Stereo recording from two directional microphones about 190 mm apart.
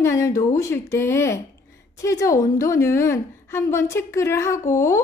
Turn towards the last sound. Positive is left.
turn(degrees=15)  # may be behind; listen again after turning